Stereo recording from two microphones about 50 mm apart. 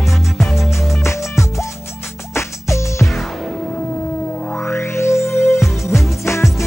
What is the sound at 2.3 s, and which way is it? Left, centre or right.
Music, left.